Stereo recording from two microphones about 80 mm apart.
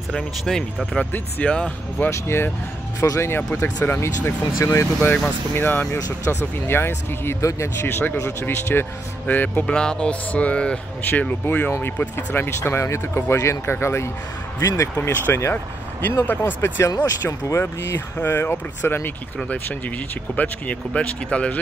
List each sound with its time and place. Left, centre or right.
0.1 s speech: centre
2.0 s speech: left
4.6 s speech: left
5.1 s speech: left
5.9 s speech: left
6.7 s speech: left
9.8 s speech: centre
12.5 s speech: left
15.0 s speech: left
16.9 s speech: left; by 21.5 s centre